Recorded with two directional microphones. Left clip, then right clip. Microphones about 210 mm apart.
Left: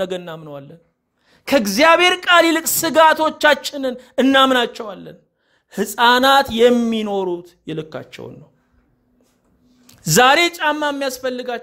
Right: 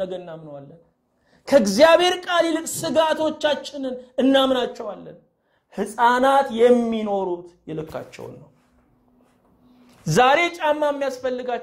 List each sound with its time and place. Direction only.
0.0 s speech: 40° left (ahead or behind)
10.0 s speech: 40° left (ahead or behind)